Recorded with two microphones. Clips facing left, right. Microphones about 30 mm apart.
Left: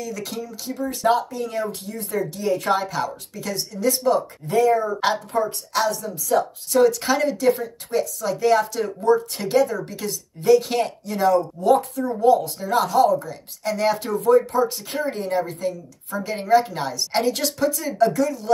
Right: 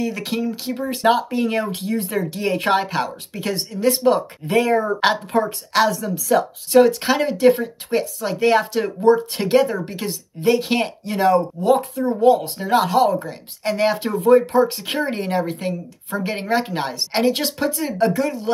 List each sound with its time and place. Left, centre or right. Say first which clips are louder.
0.0 s speech: right 7 dB; right
6.9 s speech: right 2 dB; right
12.2 s speech: right 2 dB; right
14.9 s speech: right 2 dB; right